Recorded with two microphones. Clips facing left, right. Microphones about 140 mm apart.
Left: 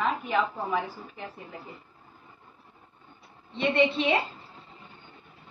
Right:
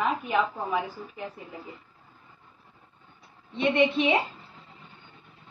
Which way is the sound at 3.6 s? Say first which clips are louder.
Right 1 dB; 15° right (ahead or behind).